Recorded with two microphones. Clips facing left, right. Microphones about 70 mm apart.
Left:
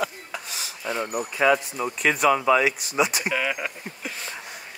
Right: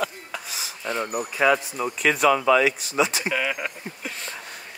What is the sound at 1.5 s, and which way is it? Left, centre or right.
Speech, centre.